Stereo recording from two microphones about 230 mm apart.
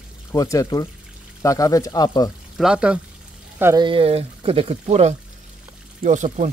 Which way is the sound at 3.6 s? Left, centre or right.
Centre.